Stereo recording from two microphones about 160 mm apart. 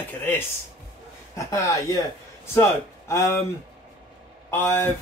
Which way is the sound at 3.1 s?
20° left (ahead or behind).